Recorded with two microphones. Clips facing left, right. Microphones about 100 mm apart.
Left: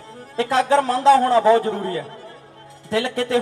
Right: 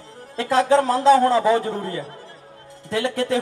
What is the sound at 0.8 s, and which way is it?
Speech, 20° right (ahead or behind).